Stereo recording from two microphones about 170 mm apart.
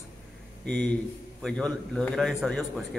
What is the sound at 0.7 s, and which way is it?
A man's voice, 5° left (ahead or behind).